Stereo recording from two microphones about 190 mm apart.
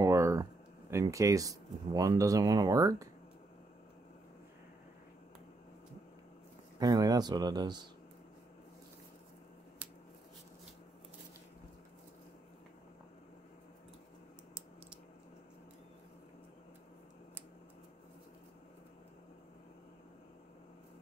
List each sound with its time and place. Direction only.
0.0 s speech: 15° right (ahead or behind)
6.8 s speech: 20° right (ahead or behind)